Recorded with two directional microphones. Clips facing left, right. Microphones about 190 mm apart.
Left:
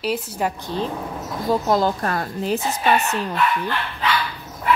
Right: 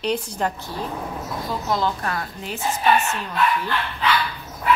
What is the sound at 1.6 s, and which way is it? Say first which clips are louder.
Speech: left 4 dB; 40° left (ahead or behind).